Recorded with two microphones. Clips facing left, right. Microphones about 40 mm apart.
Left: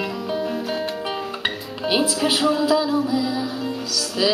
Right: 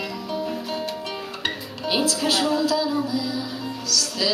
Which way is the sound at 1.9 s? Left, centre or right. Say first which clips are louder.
Left 2 dB; centre.